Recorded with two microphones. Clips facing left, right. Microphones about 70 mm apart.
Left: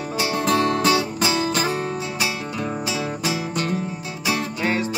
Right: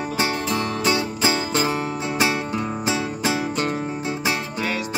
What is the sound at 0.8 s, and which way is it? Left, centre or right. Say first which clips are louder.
Music: left 1 dB; right.